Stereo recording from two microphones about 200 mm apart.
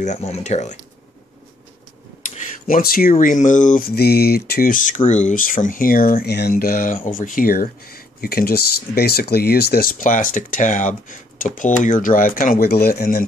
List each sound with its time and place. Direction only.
0.0 s speech: 35° left (ahead or behind)
2.3 s speech: 40° left (ahead or behind)